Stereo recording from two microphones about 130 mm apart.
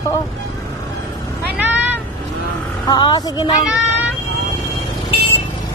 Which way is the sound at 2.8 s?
35° left (ahead or behind).